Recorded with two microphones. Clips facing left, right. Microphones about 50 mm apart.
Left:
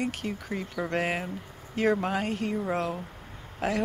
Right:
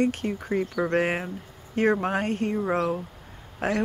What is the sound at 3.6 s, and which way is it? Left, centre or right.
Speech, right.